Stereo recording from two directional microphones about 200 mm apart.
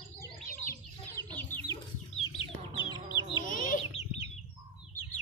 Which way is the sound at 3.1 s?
20° left (ahead or behind).